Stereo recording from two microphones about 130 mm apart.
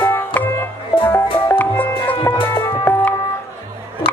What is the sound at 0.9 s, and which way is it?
Music, 40° left (ahead or behind).